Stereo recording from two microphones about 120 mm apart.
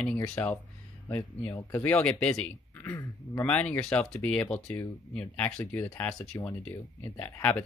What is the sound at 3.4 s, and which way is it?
Speech, 10° left (ahead or behind).